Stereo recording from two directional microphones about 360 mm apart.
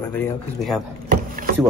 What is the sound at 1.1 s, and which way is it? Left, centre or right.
Rowboat, right.